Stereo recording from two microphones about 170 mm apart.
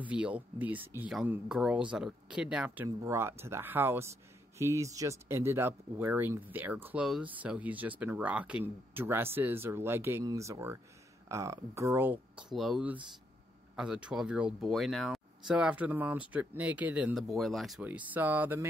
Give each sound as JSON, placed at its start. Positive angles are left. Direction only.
{"t": 0.1, "sound": "speech", "side_deg": -10}
{"t": 17.8, "sound": "speech", "side_deg": -10}